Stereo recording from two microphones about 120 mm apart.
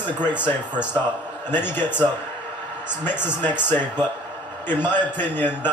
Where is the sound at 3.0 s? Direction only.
15° left (ahead or behind).